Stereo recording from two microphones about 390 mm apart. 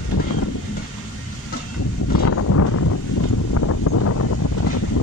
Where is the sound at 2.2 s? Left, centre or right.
Left.